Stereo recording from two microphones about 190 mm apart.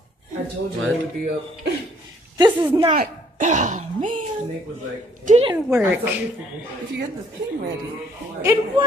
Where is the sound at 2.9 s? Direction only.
40° right (ahead or behind).